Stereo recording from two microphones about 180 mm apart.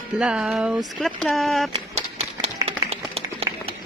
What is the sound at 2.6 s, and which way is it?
Clapping, 35° right (ahead or behind).